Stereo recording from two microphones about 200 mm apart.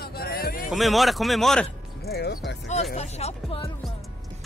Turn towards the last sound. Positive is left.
turn(degrees=30)  # may be behind; listen again after turning